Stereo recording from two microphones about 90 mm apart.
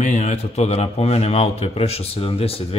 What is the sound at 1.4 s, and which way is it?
Speech, 90° left.